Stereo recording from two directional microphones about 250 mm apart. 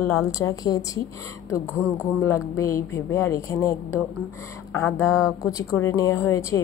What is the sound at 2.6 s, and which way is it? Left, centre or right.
A woman's voice, centre.